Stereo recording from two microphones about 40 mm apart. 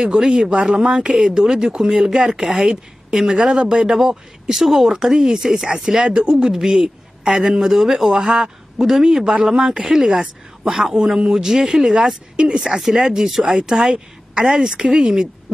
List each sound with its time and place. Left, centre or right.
0.0 s a man's voice: centre
4.5 s a man's voice: centre
11.4 s a man's voice: centre